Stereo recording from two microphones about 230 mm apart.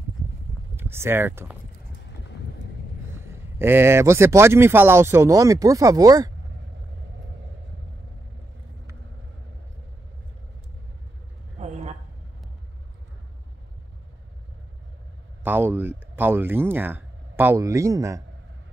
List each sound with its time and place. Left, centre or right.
0.7 s speech: centre
3.2 s speech: centre
11.5 s a sound: right
15.4 s speech: centre